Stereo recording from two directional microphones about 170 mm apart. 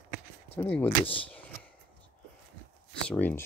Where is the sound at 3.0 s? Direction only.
10° left (ahead or behind).